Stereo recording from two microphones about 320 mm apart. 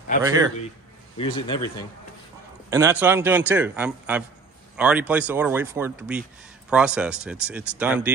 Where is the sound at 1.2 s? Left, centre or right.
Centre.